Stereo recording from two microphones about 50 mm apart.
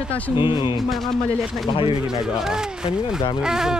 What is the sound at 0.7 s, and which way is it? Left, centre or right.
Speech, centre.